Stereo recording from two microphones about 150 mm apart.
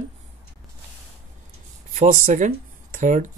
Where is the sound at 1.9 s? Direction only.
55° right (ahead or behind).